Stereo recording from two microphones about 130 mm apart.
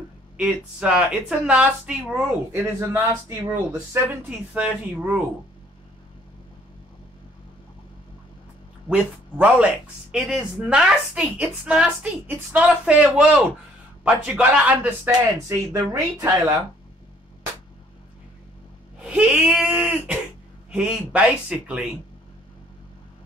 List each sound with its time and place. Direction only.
0.4 s speech: 5° right (ahead or behind)
4.6 s speech: 10° right (ahead or behind)
8.8 s speech: 10° right (ahead or behind)
15.3 s speech: 25° right (ahead or behind)
19.0 s speech: 5° right (ahead or behind)